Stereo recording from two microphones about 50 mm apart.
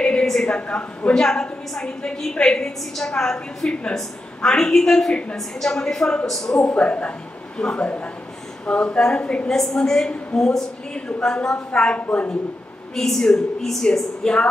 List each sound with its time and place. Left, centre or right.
0.0 s a sound: left
0.6 s a woman's voice: left
1.1 s a woman's voice: centre
6.2 s a woman's voice: centre
6.6 s a woman's voice: left
9.5 s a woman's voice: centre; by 12.4 s left
12.9 s a woman's voice: centre
14.2 s a woman's voice: centre